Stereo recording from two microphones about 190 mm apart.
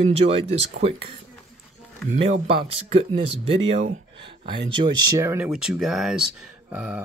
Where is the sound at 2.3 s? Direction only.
30° right (ahead or behind).